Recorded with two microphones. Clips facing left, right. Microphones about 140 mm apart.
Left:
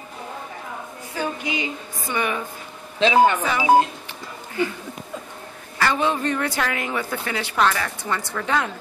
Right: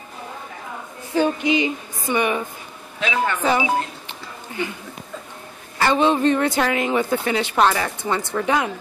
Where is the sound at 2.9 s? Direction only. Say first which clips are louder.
Left 7 dB; 25° left (ahead or behind).